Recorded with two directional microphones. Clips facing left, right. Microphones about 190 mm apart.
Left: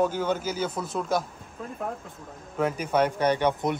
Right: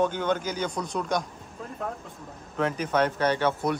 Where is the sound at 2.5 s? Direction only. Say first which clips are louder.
Left 1 dB; 10° left (ahead or behind).